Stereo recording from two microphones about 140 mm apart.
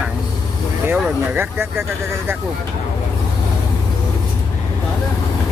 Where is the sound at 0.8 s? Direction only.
15° right (ahead or behind).